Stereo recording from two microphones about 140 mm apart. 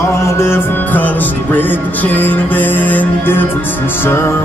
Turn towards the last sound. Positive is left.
turn(degrees=15)  # may be behind; listen again after turning